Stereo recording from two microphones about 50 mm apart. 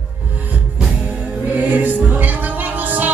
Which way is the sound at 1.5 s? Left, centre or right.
Right.